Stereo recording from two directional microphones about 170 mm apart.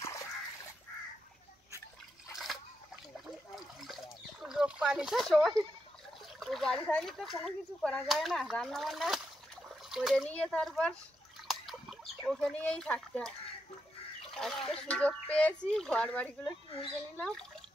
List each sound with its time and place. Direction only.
0.0 s dog: 20° left (ahead or behind)
2.3 s splash: centre (ahead or behind)
3.5 s a sound: centre (ahead or behind)
6.4 s speech: centre (ahead or behind)
11.4 s a sound: centre (ahead or behind)
14.3 s speech: 5° left (ahead or behind)